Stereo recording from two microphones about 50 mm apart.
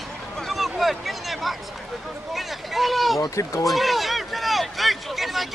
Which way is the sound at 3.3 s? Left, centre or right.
Left.